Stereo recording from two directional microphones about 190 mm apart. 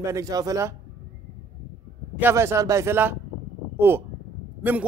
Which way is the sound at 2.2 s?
15° right (ahead or behind).